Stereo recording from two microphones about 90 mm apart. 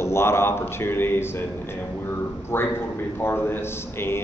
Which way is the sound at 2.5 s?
25° left (ahead or behind).